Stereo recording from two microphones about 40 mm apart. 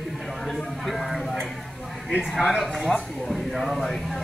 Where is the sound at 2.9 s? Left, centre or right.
Left.